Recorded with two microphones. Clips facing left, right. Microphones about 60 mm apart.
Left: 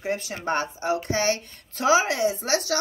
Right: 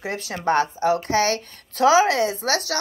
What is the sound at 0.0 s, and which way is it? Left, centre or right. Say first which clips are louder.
Speech: right 3 dB; right.